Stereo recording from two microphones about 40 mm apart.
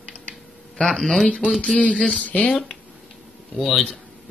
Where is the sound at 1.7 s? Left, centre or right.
Left.